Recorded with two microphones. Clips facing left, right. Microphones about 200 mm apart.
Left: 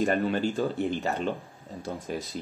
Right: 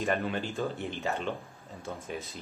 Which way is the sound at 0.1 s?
35° left (ahead or behind).